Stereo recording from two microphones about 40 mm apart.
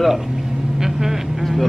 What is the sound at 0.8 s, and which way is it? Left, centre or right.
Vehicle, centre.